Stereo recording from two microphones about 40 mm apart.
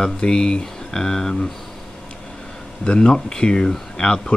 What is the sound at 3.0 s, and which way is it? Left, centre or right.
Speech, left.